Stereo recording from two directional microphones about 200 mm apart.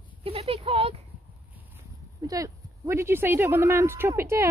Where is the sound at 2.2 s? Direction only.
15° right (ahead or behind).